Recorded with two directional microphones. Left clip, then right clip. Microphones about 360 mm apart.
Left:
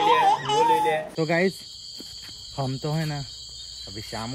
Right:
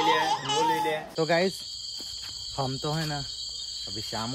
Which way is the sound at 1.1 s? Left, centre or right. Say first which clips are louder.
Left 1 dB; left.